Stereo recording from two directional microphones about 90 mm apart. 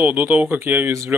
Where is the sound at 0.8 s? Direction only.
30° right (ahead or behind).